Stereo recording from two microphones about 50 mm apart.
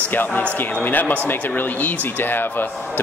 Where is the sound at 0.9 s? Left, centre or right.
Left.